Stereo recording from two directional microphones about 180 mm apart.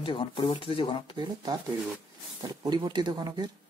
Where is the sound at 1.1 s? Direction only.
20° right (ahead or behind).